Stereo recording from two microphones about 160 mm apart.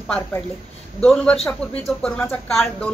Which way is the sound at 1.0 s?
5° left (ahead or behind).